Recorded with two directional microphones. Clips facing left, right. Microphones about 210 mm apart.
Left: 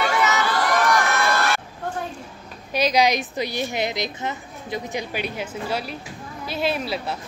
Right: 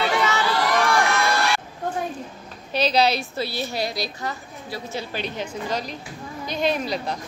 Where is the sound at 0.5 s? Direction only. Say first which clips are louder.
Even; 50° left (ahead or behind).